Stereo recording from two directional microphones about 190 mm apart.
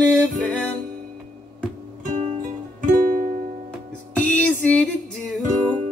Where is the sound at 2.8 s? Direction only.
45° right (ahead or behind).